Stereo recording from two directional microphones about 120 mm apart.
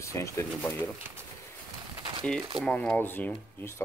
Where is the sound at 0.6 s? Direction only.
15° left (ahead or behind).